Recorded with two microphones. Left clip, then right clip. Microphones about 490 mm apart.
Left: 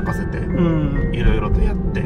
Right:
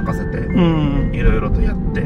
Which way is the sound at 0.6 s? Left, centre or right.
Centre.